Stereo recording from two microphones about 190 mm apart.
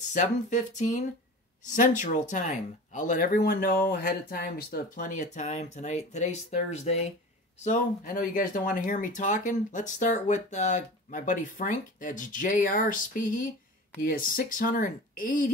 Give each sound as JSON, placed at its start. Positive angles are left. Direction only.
{"t": 0.1, "sound": "speech", "side_deg": 40}